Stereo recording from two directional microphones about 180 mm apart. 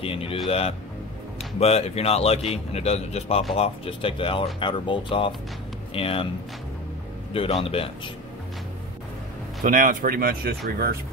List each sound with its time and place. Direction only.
0.0 s a man's voice: 30° left (ahead or behind)
7.3 s a man's voice: 30° left (ahead or behind)
9.6 s speech: 45° right (ahead or behind)